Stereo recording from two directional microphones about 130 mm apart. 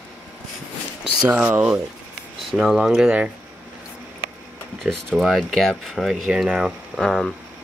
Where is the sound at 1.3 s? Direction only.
10° right (ahead or behind).